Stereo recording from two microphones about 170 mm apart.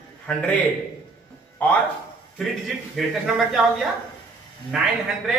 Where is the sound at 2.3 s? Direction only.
Centre (ahead or behind).